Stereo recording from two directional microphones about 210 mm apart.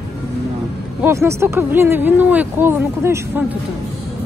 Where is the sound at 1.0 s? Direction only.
15° right (ahead or behind).